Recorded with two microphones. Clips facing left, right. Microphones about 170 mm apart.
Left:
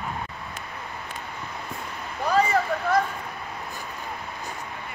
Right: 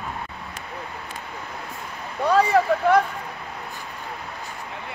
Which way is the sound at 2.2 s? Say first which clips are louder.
Right 4 dB; 65° right (ahead or behind).